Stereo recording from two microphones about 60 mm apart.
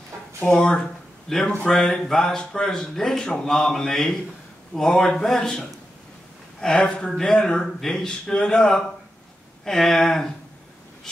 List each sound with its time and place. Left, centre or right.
0.4 s speech: centre